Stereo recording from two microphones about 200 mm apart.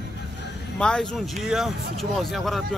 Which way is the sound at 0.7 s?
5° left (ahead or behind).